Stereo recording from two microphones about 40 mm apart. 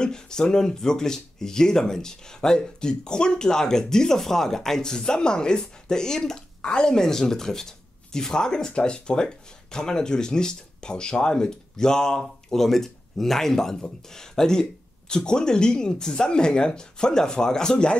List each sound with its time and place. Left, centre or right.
0.0 s speech: centre